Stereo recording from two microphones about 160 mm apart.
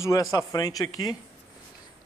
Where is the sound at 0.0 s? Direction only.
20° left (ahead or behind).